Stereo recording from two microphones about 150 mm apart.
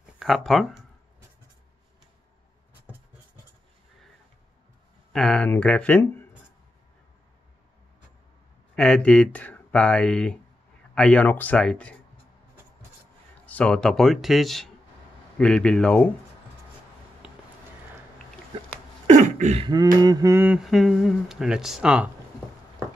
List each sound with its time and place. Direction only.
0.2 s speech: centre (ahead or behind)
5.1 s speech: 5° left (ahead or behind)
8.7 s speech: 5° left (ahead or behind)
13.5 s speech: 10° left (ahead or behind)
19.0 s cough: 55° right (ahead or behind)
19.6 s a sound: 25° right (ahead or behind)
20.4 s speech: 5° right (ahead or behind)